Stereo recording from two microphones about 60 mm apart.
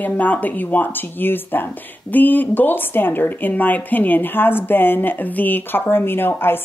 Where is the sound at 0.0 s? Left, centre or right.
Left.